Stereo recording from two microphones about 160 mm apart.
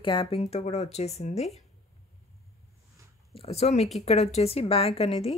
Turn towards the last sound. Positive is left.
turn(degrees=40)  # may be behind; listen again after turning